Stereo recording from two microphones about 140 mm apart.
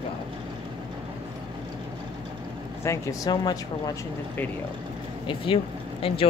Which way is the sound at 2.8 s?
20° left (ahead or behind).